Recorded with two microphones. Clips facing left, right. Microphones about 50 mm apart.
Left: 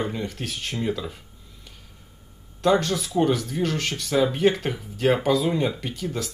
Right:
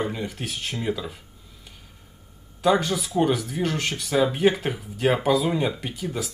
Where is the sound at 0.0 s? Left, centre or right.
Centre.